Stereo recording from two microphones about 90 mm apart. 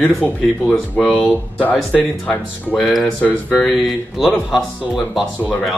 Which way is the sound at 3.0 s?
10° left (ahead or behind).